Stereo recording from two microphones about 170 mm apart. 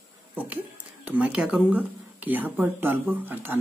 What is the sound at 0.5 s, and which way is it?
Speech, 10° right (ahead or behind).